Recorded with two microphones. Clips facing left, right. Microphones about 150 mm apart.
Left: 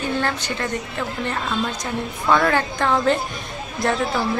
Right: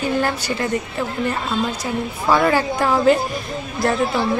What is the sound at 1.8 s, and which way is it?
A woman's voice, 5° right (ahead or behind).